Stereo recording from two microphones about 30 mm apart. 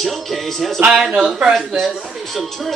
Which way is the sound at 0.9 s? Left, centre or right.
Centre.